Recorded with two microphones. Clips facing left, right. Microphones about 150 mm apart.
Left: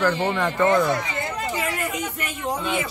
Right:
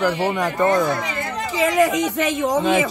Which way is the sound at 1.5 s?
90° right.